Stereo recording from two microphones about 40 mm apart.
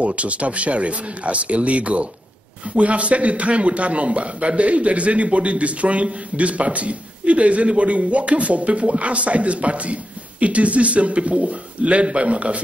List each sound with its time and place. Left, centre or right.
0.0 s speech: right